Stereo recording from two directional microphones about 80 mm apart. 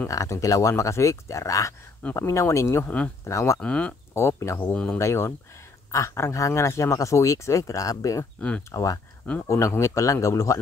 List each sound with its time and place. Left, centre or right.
0.1 s a man's voice: left
3.5 s speech: centre
4.1 s a man's voice: left
4.6 s speech: centre
4.9 s a man's voice: left
8.4 s speech: centre
8.7 s a man's voice: left